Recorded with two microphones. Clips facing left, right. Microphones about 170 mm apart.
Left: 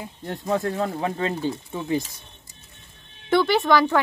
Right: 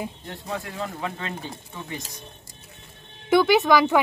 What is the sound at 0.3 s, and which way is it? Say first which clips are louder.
Speech: left 8 dB; 40° left (ahead or behind).